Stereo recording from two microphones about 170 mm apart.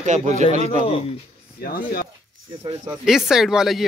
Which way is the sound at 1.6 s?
60° left (ahead or behind).